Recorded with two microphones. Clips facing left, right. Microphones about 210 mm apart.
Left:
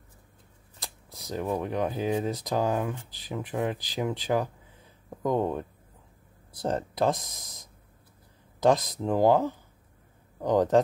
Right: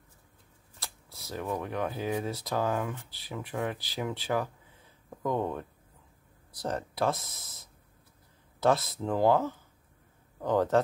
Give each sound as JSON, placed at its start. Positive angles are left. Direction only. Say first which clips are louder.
{"t": 0.7, "sound": "speech", "louder": "left 3 dB", "side_deg": 15}